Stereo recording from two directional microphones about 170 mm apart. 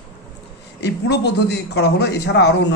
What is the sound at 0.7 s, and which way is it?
A man's voice, 85° left.